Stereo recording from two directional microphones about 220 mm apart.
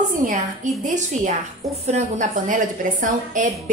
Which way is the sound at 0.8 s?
35° right (ahead or behind).